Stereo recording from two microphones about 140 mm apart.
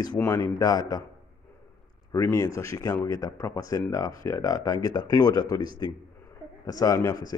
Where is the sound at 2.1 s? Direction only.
25° left (ahead or behind).